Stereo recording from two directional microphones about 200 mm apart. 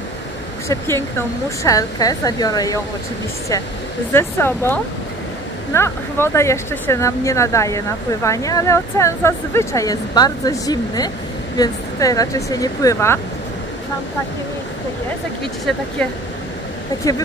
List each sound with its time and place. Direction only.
0.7 s speech: 10° left (ahead or behind)
4.1 s speech: 10° left (ahead or behind)